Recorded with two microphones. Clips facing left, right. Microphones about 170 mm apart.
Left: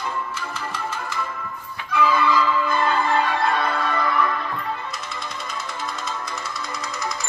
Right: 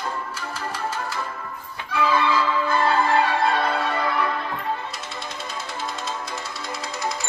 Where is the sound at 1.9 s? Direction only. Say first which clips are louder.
Left 1 dB; 30° right (ahead or behind).